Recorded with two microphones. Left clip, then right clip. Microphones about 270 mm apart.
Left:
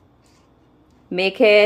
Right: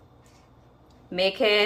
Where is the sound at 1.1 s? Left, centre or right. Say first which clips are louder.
Left 8 dB; left.